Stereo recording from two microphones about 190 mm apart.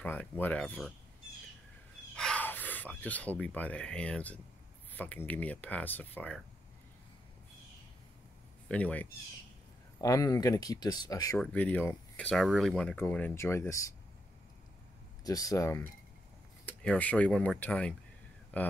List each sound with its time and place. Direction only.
0.0 s speech: 10° left (ahead or behind)
2.1 s speech: 5° left (ahead or behind)
8.6 s speech: 5° left (ahead or behind)
9.9 s speech: 20° left (ahead or behind)
11.3 s speech: 5° left (ahead or behind)
15.2 s speech: 20° left (ahead or behind)